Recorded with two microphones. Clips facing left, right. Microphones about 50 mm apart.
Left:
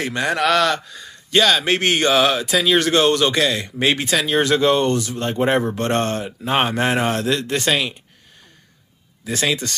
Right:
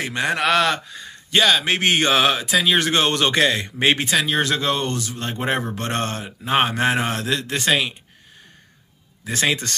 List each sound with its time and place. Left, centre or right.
0.0 s a man's voice: centre
4.4 s speech: centre
9.2 s a man's voice: right